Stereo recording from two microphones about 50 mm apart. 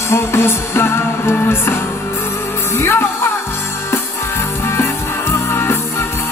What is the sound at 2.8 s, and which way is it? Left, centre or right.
Music, left.